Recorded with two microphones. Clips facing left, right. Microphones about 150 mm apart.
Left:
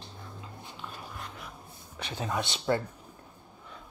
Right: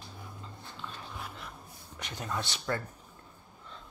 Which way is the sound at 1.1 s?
Centre (ahead or behind).